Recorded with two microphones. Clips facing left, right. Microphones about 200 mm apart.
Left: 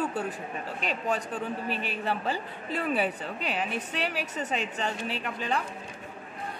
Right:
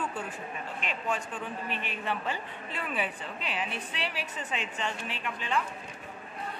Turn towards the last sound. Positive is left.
turn(degrees=40)  # may be behind; listen again after turning